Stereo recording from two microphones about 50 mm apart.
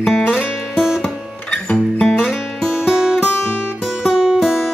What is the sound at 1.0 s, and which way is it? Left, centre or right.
Music, left.